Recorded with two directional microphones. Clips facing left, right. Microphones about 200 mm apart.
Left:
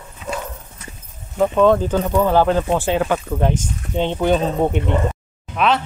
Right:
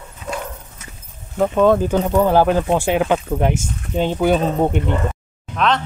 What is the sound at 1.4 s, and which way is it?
Speech, 10° right (ahead or behind).